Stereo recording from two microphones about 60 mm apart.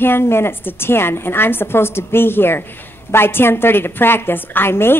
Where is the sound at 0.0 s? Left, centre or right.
Left.